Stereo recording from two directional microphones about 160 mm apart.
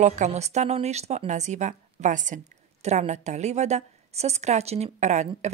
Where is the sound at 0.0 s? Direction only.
45° right (ahead or behind).